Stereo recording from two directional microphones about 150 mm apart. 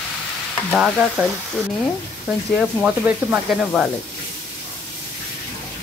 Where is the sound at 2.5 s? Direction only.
10° right (ahead or behind).